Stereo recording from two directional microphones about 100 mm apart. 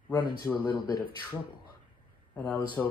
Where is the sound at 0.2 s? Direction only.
15° left (ahead or behind).